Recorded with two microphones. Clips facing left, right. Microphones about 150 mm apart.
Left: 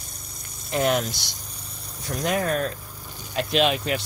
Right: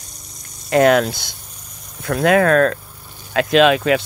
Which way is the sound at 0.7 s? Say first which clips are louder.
Right 10 dB; 90° right.